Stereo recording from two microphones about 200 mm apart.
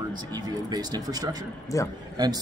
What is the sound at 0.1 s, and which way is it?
Speech, 20° right (ahead or behind).